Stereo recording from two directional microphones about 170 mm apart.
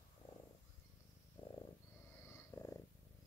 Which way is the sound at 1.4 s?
25° left (ahead or behind).